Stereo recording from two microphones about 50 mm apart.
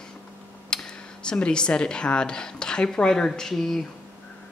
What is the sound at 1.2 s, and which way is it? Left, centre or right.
A woman's voice, centre.